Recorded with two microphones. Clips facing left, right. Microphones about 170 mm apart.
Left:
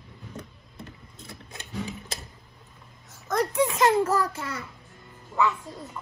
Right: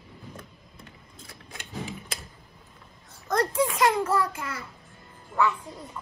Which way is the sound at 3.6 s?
25° left (ahead or behind).